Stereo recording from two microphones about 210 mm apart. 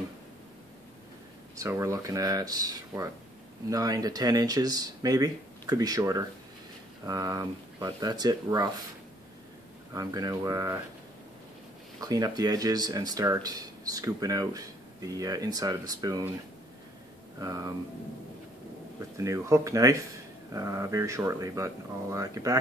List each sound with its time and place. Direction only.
1.6 s speech: 15° right (ahead or behind)
9.9 s speech: 15° right (ahead or behind)
12.0 s speech: 20° right (ahead or behind)
17.4 s speech: 15° right (ahead or behind)
18.9 s speech: 15° right (ahead or behind)